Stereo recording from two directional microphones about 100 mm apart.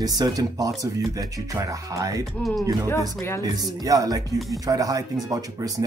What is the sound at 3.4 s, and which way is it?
Speech, 40° right (ahead or behind).